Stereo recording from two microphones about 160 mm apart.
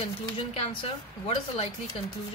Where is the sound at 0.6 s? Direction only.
40° left (ahead or behind).